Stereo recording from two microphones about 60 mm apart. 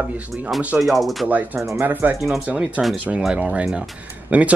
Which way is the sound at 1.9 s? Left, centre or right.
Right.